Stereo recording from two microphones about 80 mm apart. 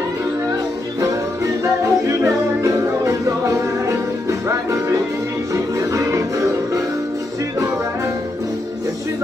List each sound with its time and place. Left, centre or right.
1.0 s music: right
5.9 s music: right